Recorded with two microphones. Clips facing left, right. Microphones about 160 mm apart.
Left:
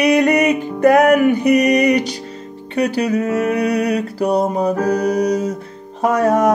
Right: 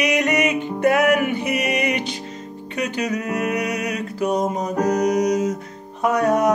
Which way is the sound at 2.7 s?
35° left (ahead or behind).